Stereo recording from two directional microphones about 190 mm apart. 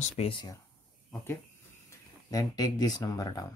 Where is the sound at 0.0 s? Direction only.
30° left (ahead or behind).